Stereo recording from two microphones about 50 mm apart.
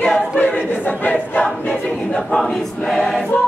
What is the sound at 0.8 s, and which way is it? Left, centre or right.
Crowd, left.